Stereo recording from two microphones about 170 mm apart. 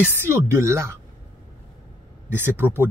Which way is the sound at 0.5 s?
15° right (ahead or behind).